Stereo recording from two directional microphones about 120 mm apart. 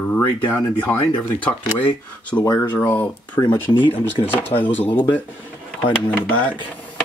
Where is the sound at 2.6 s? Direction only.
15° left (ahead or behind).